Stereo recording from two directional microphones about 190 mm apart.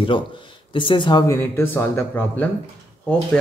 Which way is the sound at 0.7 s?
25° left (ahead or behind).